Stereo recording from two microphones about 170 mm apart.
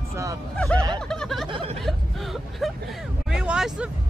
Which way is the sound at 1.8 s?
Centre (ahead or behind).